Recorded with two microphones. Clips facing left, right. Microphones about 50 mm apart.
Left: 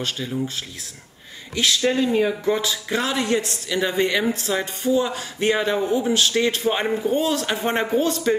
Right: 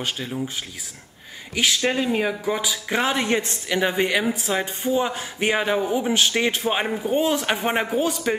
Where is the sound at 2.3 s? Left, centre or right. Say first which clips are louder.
Left 3 dB; centre.